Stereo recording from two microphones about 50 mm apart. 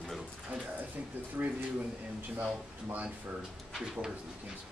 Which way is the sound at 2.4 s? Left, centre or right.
Right.